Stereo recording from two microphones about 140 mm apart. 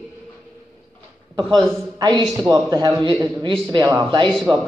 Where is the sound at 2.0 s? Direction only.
35° right (ahead or behind).